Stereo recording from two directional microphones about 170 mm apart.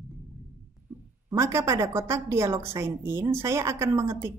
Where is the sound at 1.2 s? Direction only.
15° right (ahead or behind).